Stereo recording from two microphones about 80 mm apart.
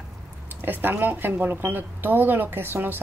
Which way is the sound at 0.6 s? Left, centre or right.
Right.